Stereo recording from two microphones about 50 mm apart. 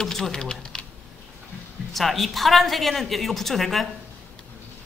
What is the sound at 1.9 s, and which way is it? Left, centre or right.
A woman's voice, centre.